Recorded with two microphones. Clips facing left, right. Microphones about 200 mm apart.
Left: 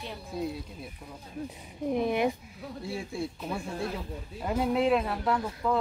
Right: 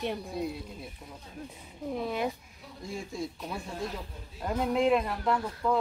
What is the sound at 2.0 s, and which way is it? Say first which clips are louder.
Speech: left 5 dB; 20° left (ahead or behind).